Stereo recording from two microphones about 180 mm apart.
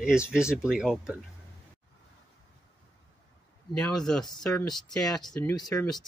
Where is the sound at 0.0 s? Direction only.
5° right (ahead or behind).